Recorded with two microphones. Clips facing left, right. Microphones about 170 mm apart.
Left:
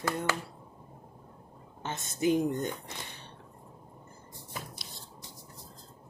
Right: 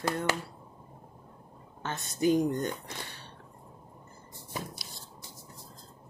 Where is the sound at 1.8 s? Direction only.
15° left (ahead or behind).